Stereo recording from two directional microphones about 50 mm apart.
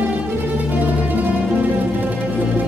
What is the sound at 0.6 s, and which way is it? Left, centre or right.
Music, right.